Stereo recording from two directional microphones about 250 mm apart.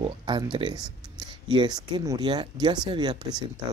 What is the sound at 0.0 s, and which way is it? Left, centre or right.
Speech, centre.